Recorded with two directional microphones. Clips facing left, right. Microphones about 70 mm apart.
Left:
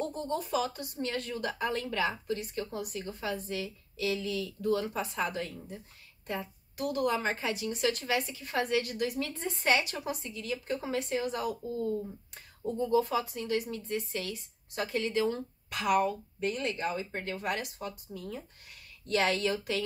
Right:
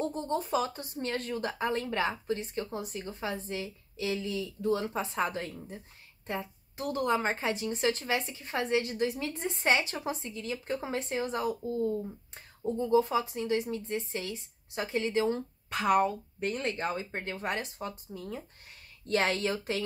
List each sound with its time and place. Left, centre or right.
0.0 s speech: right